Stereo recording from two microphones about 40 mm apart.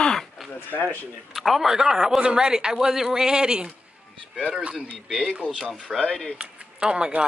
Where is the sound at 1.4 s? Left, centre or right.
Centre.